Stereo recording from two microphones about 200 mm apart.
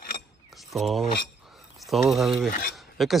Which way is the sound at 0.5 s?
Centre (ahead or behind).